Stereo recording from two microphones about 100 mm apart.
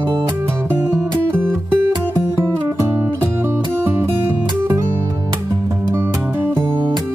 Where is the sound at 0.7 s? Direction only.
25° right (ahead or behind).